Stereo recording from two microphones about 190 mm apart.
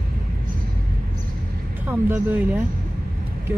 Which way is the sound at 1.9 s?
10° right (ahead or behind).